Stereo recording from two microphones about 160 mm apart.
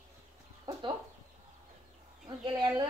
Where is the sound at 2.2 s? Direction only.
30° right (ahead or behind).